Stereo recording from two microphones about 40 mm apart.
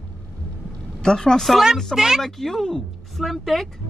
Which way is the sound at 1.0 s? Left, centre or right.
Centre.